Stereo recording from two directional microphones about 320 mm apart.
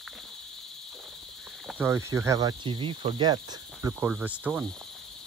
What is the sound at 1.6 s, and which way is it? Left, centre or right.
Speech, centre.